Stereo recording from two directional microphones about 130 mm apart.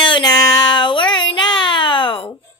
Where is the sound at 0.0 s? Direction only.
35° left (ahead or behind).